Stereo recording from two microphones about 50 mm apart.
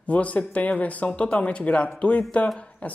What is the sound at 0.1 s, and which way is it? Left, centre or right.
Speech, left.